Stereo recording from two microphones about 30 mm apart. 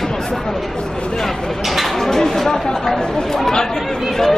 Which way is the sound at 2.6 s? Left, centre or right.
Centre.